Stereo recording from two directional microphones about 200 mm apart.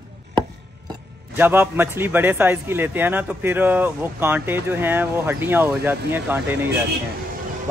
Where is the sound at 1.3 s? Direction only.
10° right (ahead or behind).